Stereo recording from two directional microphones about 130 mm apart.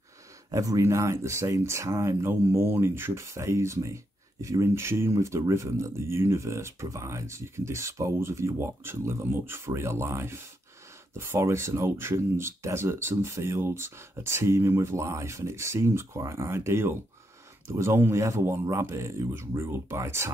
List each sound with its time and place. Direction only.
0.5 s speech: 25° right (ahead or behind)